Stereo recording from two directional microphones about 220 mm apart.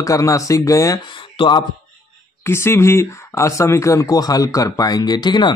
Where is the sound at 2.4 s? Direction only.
10° left (ahead or behind).